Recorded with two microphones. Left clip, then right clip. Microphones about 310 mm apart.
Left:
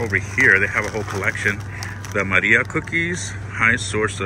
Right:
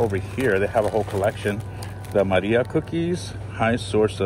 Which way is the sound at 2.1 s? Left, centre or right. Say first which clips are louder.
Left 3 dB; right.